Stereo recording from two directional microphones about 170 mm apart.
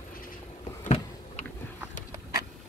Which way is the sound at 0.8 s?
40° left (ahead or behind).